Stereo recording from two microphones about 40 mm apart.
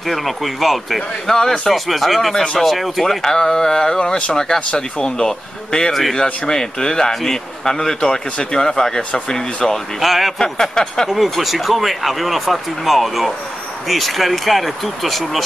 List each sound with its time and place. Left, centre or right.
0.1 s speech: centre
1.3 s a man's voice: centre
1.7 s a man's voice: centre
9.9 s speech: centre
10.4 s a man's voice: centre
11.1 s speech: centre